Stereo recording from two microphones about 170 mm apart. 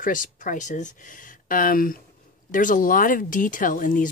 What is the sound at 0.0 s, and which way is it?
Speech, 50° left (ahead or behind).